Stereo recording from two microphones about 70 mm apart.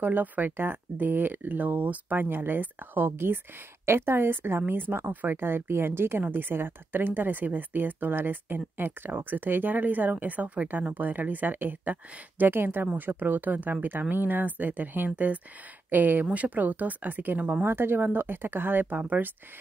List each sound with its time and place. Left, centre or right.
0.0 s a woman's voice: right